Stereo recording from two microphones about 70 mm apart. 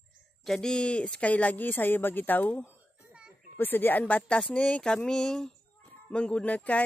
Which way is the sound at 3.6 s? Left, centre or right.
Left.